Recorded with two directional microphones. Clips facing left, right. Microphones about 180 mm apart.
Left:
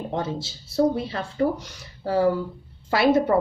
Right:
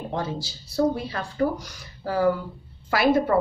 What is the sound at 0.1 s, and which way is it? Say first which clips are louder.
A woman's voice: even; 25° left (ahead or behind).